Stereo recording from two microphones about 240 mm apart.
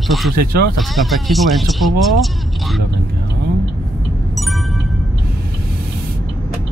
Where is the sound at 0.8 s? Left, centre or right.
Centre.